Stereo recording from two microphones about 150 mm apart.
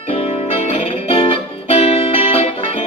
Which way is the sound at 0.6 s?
40° left (ahead or behind).